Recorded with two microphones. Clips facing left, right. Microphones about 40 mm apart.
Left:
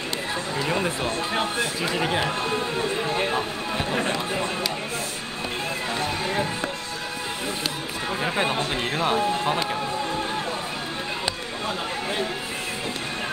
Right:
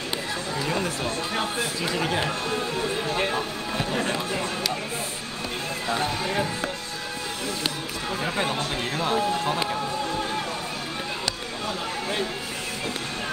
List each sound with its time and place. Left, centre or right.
0.6 s a sound: centre
1.9 s speech: centre
2.4 s speech: centre
3.3 s a sound: centre
6.0 s run: centre
8.2 s speech: centre